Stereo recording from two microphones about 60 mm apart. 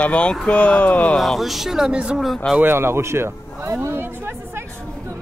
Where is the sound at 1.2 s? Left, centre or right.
Centre.